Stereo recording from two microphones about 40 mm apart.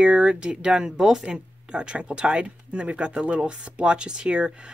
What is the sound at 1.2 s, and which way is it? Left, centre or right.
Speech, right.